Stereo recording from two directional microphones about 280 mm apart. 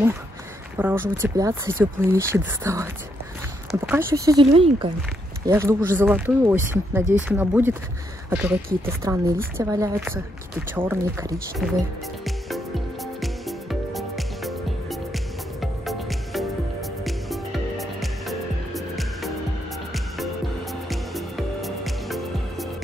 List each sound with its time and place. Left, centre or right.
0.7 s speech: centre
11.6 s speech: centre
12.3 s music: centre
20.9 s music: centre